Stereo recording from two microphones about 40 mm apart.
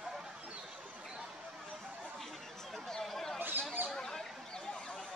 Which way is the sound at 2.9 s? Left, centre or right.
Centre.